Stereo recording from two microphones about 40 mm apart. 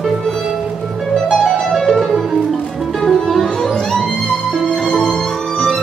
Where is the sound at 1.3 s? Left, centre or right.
Centre.